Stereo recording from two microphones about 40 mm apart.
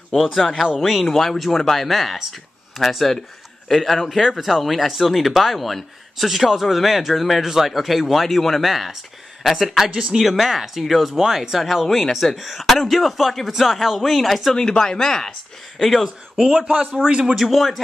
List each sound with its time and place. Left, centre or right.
0.1 s speech: centre
1.0 s speech: centre
14.5 s speech: centre
15.8 s speech: centre
16.7 s a man's voice: right
17.4 s speech: centre